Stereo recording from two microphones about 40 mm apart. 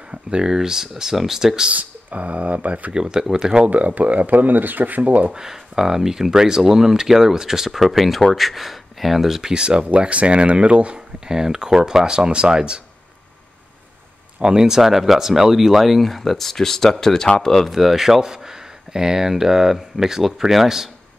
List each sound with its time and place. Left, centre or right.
0.1 s speech: right
1.7 s speech: right
2.9 s speech: centre
3.6 s speech: right
5.3 s speech: centre
9.5 s speech: right
11.2 s speech: centre
14.4 s speech: centre
17.6 s speech: centre